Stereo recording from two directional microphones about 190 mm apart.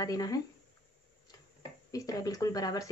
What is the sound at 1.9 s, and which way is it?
Speech, 20° left (ahead or behind).